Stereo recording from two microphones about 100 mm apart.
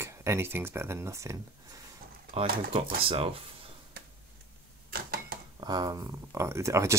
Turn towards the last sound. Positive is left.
turn(degrees=-30)  # may be behind; listen again after turning